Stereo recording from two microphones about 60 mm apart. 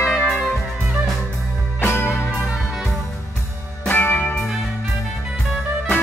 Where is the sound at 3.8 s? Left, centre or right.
Left.